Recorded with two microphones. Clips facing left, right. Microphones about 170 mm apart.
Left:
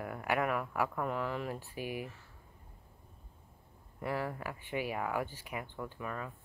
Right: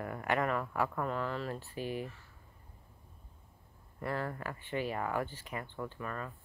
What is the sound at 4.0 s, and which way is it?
Speech, 10° left (ahead or behind).